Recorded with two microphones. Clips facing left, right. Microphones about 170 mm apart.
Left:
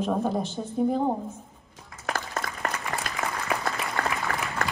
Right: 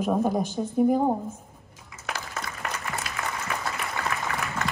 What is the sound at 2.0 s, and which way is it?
Applause, 50° left (ahead or behind).